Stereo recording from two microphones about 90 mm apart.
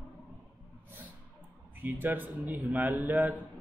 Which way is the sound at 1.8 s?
20° right (ahead or behind).